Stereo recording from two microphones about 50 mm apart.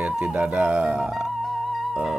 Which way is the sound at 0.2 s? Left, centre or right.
Right.